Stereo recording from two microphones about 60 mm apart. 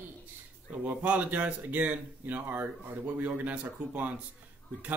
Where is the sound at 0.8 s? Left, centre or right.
Right.